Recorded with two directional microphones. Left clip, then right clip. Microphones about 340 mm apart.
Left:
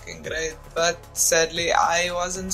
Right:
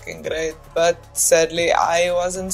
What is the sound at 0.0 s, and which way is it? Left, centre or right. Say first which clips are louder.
Speech: right 5 dB; centre.